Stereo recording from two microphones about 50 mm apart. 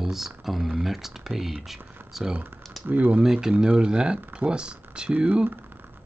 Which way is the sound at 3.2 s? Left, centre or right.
Centre.